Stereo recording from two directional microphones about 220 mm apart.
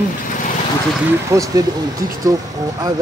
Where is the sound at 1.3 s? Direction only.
15° right (ahead or behind).